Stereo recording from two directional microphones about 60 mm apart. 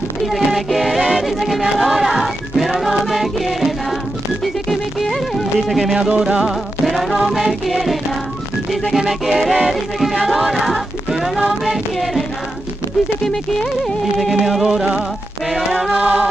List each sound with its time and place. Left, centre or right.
0.3 s music: centre
5.9 s music: centre
13.8 s music: centre
15.9 s music: centre